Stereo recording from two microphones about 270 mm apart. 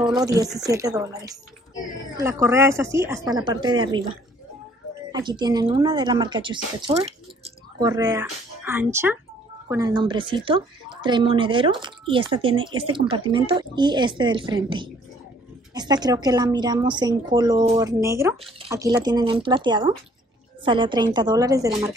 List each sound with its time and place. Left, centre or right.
0.1 s speech: centre
5.1 s speech: centre